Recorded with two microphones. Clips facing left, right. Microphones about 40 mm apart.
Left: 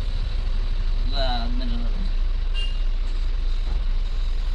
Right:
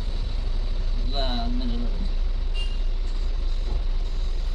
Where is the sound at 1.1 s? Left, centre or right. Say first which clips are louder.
Left 1 dB; centre.